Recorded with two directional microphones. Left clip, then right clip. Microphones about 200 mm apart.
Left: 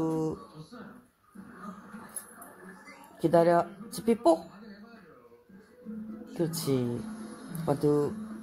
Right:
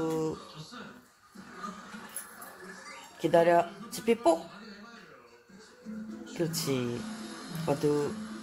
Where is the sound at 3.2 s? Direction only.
25° left (ahead or behind).